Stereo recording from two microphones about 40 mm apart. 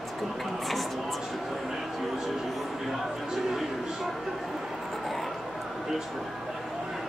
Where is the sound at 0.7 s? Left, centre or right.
Centre.